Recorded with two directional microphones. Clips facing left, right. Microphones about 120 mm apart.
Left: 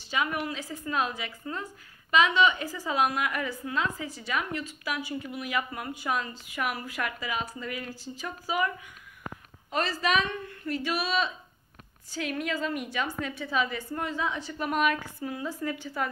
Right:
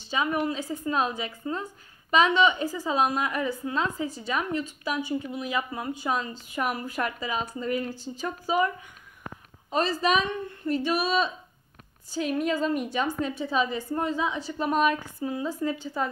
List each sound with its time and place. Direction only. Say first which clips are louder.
0.1 s a woman's voice: right 4 dB; 30° right (ahead or behind)